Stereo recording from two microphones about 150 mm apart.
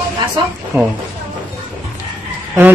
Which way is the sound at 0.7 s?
15° right (ahead or behind).